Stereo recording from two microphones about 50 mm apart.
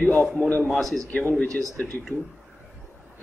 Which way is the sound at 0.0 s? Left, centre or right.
Left.